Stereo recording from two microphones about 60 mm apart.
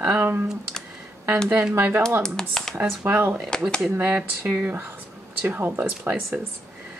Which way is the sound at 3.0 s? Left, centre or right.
Right.